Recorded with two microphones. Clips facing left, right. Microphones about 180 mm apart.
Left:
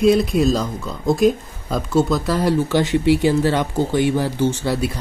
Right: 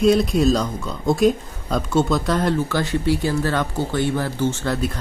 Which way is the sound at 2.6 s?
15° left (ahead or behind).